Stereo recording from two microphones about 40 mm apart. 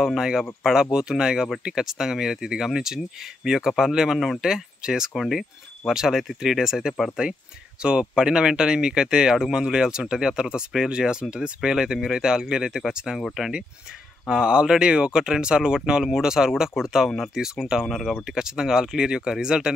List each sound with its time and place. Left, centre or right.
0.0 s speech: centre
5.1 s speech: centre
7.8 s speech: right
14.3 s speech: right
17.8 s speech: centre
18.2 s speech: centre